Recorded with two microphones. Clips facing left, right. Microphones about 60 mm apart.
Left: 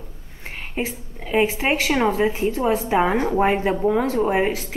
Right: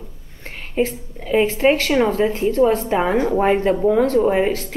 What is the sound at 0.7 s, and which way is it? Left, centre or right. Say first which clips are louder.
A woman's voice: right 8 dB; centre.